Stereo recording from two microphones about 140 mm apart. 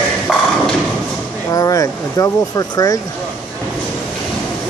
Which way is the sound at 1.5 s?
25° left (ahead or behind).